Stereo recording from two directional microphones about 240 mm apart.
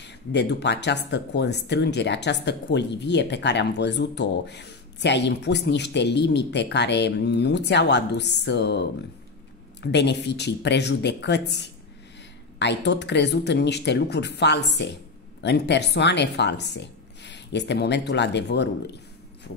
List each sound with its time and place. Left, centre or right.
0.0 s speech: left